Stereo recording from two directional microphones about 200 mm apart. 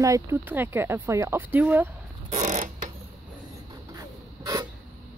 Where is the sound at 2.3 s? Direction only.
35° right (ahead or behind).